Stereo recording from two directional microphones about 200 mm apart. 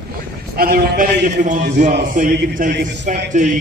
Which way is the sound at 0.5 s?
45° right (ahead or behind).